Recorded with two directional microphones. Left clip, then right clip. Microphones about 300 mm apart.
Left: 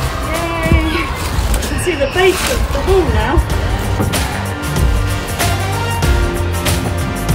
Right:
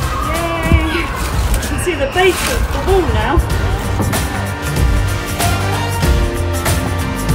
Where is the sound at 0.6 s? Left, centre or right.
Centre.